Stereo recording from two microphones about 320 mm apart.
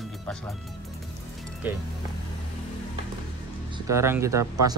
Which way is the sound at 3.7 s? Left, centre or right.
Centre.